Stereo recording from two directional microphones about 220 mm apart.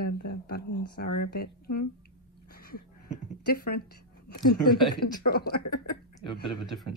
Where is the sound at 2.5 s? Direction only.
45° left (ahead or behind).